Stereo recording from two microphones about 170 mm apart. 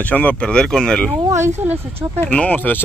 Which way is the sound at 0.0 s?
10° left (ahead or behind).